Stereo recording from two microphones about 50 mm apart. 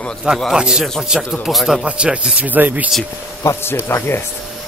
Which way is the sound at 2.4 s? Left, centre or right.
Right.